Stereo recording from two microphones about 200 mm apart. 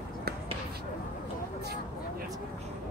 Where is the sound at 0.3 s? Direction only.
50° right (ahead or behind).